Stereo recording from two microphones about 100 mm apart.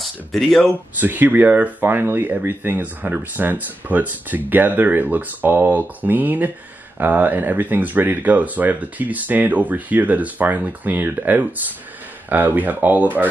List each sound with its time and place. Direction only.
0.0 s speech: centre (ahead or behind)
0.7 s speech: 20° right (ahead or behind)